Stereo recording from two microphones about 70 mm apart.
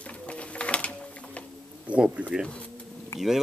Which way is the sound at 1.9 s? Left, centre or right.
Centre.